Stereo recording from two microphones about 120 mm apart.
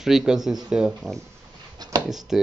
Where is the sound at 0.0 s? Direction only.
5° right (ahead or behind).